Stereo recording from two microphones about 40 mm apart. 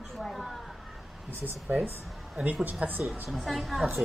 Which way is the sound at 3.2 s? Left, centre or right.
Centre.